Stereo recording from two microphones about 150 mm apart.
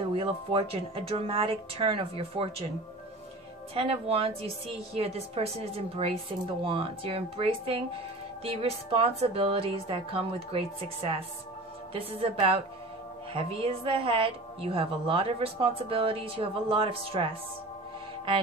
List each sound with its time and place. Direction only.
0.1 s a woman's voice: 40° right (ahead or behind)
3.7 s a woman's voice: 40° right (ahead or behind)